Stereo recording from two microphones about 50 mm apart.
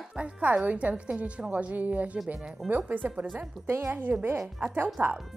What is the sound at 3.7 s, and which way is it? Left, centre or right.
Speech, right.